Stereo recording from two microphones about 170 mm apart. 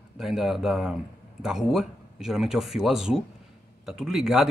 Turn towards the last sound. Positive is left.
turn(degrees=-5)  # may be behind; listen again after turning